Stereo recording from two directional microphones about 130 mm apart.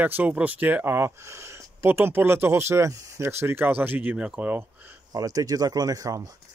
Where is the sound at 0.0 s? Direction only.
15° right (ahead or behind).